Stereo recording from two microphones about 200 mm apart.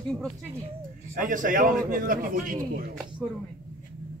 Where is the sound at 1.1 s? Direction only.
40° right (ahead or behind).